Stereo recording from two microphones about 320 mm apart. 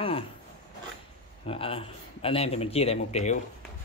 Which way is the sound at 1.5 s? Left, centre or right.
Centre.